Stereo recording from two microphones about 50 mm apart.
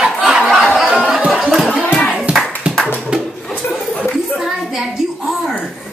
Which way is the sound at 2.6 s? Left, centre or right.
Right.